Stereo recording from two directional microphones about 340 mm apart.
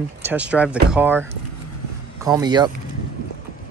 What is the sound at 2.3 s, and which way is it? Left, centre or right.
Speech, centre.